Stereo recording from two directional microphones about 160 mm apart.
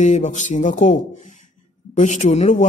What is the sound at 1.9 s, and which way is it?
Speech, 45° left (ahead or behind).